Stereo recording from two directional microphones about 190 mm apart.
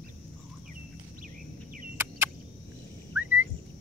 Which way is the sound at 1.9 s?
10° right (ahead or behind).